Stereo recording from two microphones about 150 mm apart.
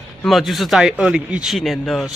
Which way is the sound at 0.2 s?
Centre (ahead or behind).